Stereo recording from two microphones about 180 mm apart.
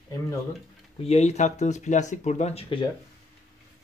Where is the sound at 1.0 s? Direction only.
40° left (ahead or behind).